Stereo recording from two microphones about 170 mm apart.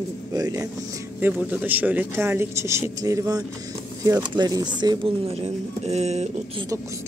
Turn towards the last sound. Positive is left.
turn(degrees=-40)  # may be behind; listen again after turning